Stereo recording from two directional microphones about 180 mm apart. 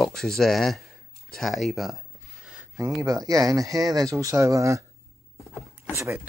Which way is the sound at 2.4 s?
5° right (ahead or behind).